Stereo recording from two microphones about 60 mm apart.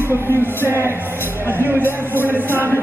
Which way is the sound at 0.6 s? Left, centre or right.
Right.